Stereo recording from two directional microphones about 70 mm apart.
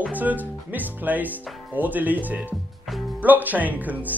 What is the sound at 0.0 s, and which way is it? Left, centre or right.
Speech, right.